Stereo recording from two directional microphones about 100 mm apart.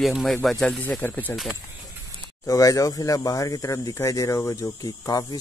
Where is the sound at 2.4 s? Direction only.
35° left (ahead or behind).